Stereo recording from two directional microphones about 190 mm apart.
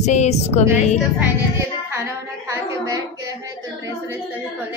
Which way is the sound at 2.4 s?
20° right (ahead or behind).